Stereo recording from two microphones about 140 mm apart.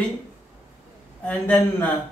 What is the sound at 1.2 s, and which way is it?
Speech, 10° left (ahead or behind).